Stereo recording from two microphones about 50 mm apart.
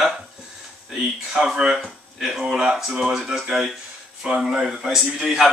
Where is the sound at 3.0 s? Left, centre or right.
Centre.